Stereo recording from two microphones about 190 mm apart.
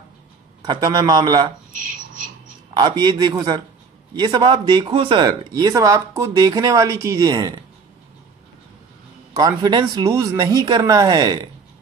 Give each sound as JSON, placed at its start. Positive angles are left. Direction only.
{"t": 0.7, "sound": "speech", "side_deg": -20}
{"t": 1.7, "sound": "a sound", "side_deg": -45}
{"t": 2.8, "sound": "speech", "side_deg": -20}
{"t": 9.3, "sound": "speech", "side_deg": -20}